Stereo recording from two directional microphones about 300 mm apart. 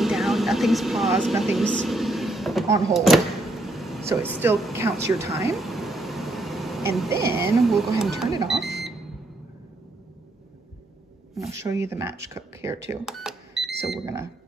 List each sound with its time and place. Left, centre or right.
0.0 s speech: centre
2.8 s a sound: centre
7.2 s speech: right
7.6 s speech: centre
11.3 s speech: centre